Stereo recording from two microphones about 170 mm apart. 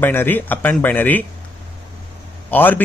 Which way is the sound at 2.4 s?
10° left (ahead or behind).